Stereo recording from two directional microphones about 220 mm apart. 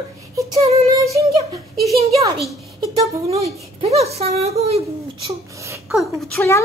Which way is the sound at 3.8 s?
30° right (ahead or behind).